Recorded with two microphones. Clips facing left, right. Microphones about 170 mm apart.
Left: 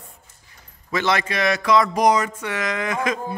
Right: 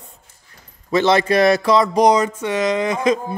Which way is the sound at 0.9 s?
30° right (ahead or behind).